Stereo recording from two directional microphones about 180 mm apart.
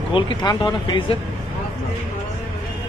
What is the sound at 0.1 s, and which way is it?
Speech, 25° left (ahead or behind).